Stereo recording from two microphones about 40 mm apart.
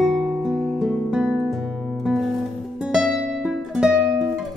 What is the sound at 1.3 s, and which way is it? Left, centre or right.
Music, centre.